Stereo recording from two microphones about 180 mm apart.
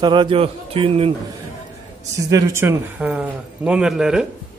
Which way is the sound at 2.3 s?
20° right (ahead or behind).